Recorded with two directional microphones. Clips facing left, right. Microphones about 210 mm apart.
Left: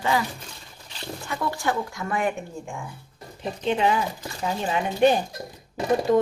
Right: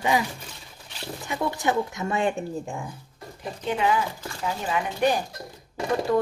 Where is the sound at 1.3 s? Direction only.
20° right (ahead or behind).